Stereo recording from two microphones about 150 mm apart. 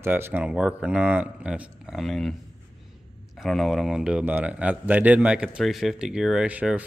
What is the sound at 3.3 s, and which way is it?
Speech, centre (ahead or behind).